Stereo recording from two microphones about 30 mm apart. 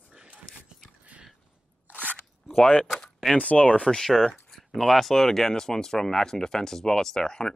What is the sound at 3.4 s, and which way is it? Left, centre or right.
Speech, left.